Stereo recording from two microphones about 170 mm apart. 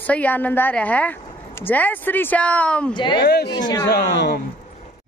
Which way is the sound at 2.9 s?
25° left (ahead or behind).